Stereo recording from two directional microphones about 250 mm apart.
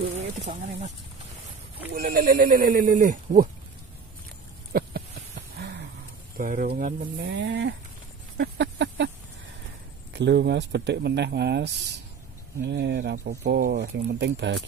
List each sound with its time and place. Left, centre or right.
0.0 s speech: right
4.7 s a sound: right
5.6 s dog: right
6.3 s speech: right
8.4 s a sound: right
10.1 s speech: right